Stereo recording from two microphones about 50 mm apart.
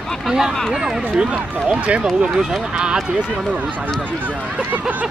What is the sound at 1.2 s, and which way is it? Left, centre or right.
Speech, right.